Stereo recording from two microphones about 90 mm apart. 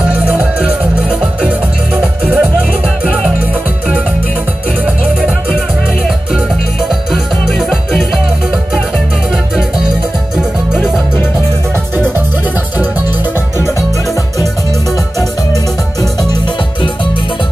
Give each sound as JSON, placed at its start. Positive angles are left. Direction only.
{"t": 0.1, "sound": "music", "side_deg": -15}
{"t": 2.0, "sound": "music", "side_deg": -15}
{"t": 7.1, "sound": "music", "side_deg": 0}